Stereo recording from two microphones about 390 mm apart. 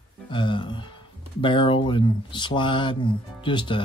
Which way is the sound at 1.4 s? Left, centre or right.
Centre.